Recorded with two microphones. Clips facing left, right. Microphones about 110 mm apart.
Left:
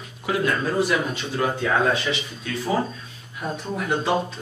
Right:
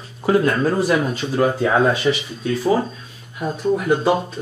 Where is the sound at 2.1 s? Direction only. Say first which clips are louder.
Right 8 dB; 25° right (ahead or behind).